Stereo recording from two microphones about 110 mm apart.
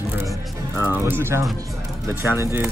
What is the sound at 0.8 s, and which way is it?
Speech, 20° right (ahead or behind).